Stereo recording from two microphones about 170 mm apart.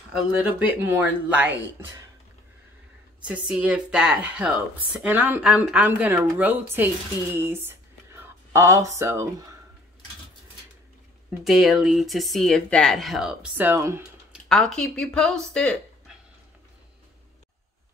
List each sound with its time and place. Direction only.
0.5 s speech: 10° right (ahead or behind)
3.3 s speech: 5° right (ahead or behind)
11.4 s speech: centre (ahead or behind)
14.5 s speech: centre (ahead or behind)